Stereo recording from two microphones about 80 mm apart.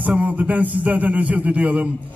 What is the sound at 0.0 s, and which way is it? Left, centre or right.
A man's voice, centre.